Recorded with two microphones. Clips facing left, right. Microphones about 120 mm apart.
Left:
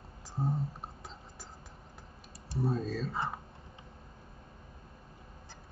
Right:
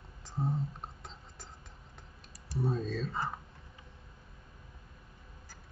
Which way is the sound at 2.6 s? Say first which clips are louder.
Left 1 dB; centre (ahead or behind).